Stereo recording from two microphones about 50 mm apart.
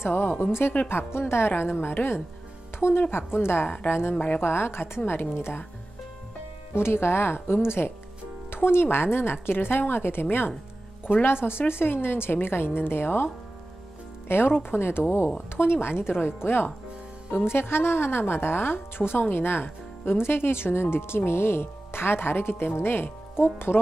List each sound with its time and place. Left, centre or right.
0.0 s speech: left
4.1 s a woman's voice: left
4.4 s speech: left
6.7 s speech: left